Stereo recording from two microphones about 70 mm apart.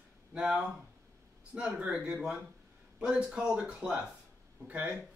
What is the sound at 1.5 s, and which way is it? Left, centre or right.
A man's voice, centre.